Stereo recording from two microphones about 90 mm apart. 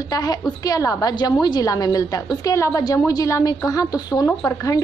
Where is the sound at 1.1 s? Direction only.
50° left (ahead or behind).